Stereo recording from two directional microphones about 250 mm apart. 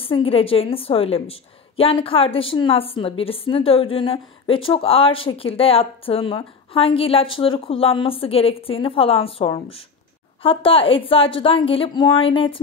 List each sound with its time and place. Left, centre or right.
0.0 s a woman's voice: left